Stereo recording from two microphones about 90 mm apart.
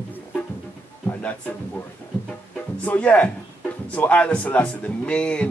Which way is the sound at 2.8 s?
15° left (ahead or behind).